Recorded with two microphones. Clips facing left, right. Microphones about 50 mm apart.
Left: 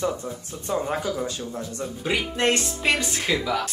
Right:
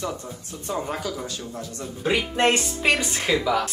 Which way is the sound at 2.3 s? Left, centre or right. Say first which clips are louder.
Right 2 dB; right.